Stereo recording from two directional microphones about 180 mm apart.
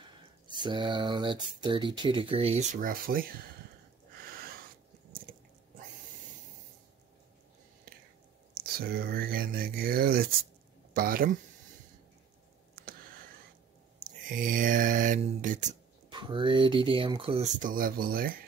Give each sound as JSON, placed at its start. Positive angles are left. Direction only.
{"t": 0.5, "sound": "speech", "side_deg": -25}
{"t": 8.5, "sound": "speech", "side_deg": -55}
{"t": 12.8, "sound": "a sound", "side_deg": -55}
{"t": 13.9, "sound": "mantra", "side_deg": -50}
{"t": 16.1, "sound": "speech", "side_deg": -25}
{"t": 17.6, "sound": "speech", "side_deg": -50}